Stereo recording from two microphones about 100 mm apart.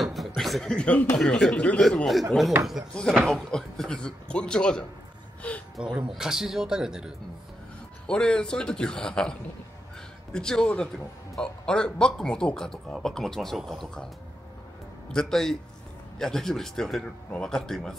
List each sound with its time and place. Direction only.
0.0 s chuckle: centre (ahead or behind)
1.1 s a man's voice: 5° left (ahead or behind)
5.9 s a man's voice: 5° right (ahead or behind)
8.1 s a man's voice: 10° left (ahead or behind)
15.1 s a man's voice: 5° left (ahead or behind)